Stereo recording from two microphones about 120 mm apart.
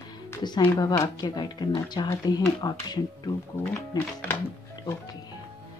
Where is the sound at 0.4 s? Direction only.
35° left (ahead or behind).